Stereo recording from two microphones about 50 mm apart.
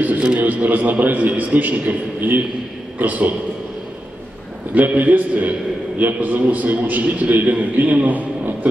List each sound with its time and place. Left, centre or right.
0.0 s a man's voice: right
4.7 s a man's voice: right